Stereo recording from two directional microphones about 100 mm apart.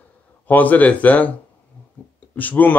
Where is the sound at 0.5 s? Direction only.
15° left (ahead or behind).